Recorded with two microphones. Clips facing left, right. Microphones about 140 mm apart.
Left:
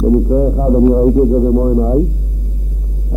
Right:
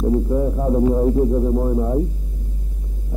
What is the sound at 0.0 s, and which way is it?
Music, 30° left (ahead or behind).